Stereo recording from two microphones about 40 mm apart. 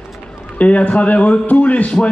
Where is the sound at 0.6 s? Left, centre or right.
Left.